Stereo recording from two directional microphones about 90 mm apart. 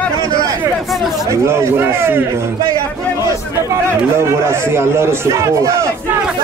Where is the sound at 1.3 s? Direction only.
30° right (ahead or behind).